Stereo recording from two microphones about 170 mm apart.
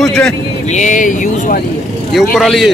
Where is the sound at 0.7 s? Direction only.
45° left (ahead or behind).